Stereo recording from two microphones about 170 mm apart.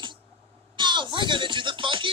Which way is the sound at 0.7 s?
25° right (ahead or behind).